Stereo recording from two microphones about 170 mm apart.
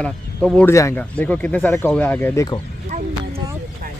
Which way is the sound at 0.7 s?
15° left (ahead or behind).